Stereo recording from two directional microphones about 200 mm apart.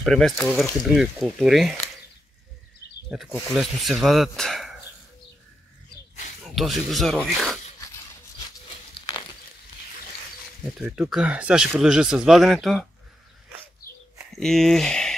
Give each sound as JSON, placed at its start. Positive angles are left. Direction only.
{"t": 0.0, "sound": "speech", "side_deg": 0}
{"t": 3.1, "sound": "speech", "side_deg": -5}
{"t": 6.4, "sound": "speech", "side_deg": 0}
{"t": 9.1, "sound": "a sound", "side_deg": 15}
{"t": 10.8, "sound": "speech", "side_deg": -5}
{"t": 14.3, "sound": "speech", "side_deg": 0}